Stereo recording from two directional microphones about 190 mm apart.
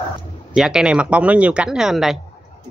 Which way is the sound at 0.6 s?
5° right (ahead or behind).